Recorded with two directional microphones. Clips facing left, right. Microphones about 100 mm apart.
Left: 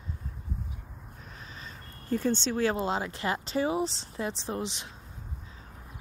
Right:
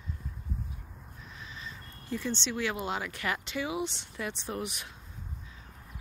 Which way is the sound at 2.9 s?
30° left (ahead or behind).